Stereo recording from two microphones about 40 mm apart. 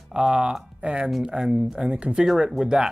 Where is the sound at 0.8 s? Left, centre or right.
Right.